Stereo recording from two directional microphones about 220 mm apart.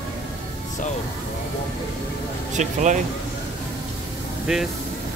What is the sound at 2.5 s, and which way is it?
Speech, 35° right (ahead or behind).